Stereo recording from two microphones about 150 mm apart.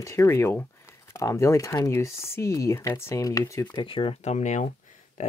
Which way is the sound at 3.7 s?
35° left (ahead or behind).